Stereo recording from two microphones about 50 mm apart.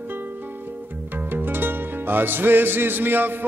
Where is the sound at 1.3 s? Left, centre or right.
Right.